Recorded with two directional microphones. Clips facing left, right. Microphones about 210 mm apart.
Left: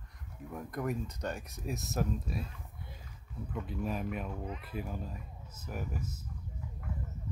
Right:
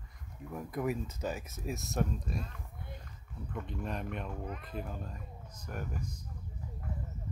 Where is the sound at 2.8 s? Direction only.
55° right (ahead or behind).